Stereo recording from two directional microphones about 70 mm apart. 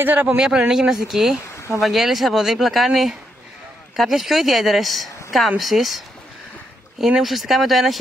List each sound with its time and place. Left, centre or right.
0.0 s a man's voice: right
0.4 s speech: centre